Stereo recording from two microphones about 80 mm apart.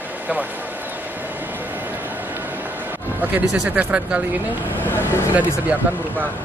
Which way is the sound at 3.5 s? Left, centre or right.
Centre.